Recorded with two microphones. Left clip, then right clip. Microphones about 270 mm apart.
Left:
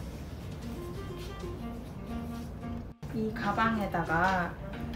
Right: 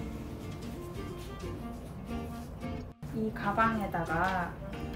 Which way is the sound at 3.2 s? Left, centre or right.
Centre.